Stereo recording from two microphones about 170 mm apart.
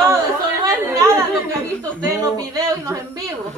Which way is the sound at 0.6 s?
20° right (ahead or behind).